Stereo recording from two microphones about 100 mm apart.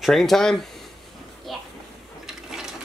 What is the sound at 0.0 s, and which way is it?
Speech, centre (ahead or behind).